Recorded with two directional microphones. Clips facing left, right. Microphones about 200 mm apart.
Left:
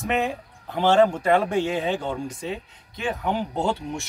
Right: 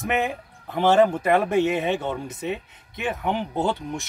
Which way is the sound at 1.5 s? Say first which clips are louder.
Right 2 dB; 20° right (ahead or behind).